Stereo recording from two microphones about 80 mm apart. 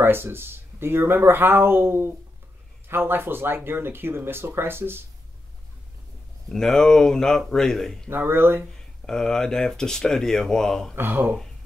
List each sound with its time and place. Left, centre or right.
0.0 s speech: right
6.5 s speech: centre
8.1 s speech: right
9.0 s speech: centre
11.0 s speech: right